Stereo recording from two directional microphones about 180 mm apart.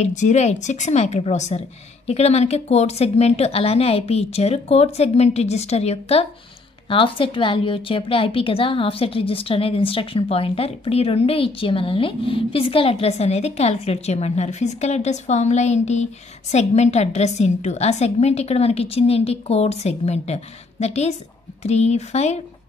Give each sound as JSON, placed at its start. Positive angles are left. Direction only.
{"t": 0.0, "sound": "a woman's voice", "side_deg": 40}